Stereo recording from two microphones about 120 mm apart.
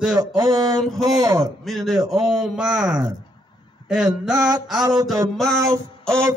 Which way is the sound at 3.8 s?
35° left (ahead or behind).